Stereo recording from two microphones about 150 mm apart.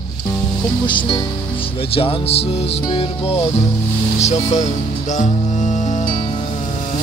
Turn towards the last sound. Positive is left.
turn(degrees=55)  # may be behind; listen again after turning